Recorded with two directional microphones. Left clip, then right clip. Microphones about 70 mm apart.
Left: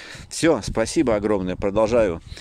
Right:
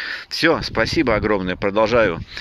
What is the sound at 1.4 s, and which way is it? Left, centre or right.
Speech, left.